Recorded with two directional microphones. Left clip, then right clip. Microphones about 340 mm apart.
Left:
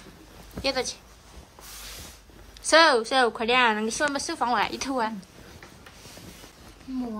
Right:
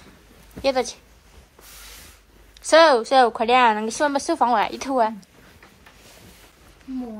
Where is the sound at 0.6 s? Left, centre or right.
Centre.